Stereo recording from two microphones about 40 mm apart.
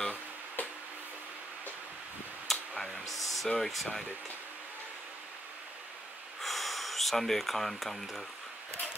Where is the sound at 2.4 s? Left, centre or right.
Centre.